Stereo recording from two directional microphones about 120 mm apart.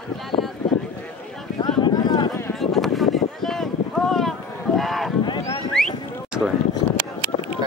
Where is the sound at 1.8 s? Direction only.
35° left (ahead or behind).